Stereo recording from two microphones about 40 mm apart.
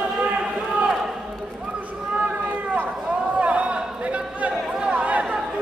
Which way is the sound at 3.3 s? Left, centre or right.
Right.